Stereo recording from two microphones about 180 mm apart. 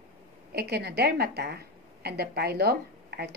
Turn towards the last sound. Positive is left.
turn(degrees=-65)  # may be behind; listen again after turning